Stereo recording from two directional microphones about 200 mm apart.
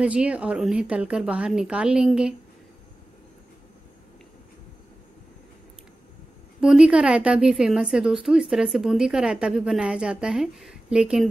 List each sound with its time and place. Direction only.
0.0 s a woman's voice: 5° right (ahead or behind)
6.6 s a woman's voice: 5° right (ahead or behind)